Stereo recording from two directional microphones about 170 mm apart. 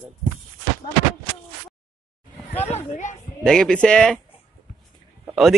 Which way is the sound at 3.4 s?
5° left (ahead or behind).